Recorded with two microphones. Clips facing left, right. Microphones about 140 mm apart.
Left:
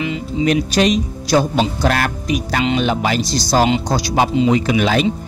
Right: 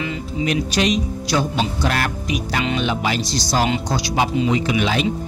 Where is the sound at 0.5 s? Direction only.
40° left (ahead or behind).